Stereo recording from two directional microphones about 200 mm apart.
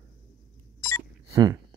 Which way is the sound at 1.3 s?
15° right (ahead or behind).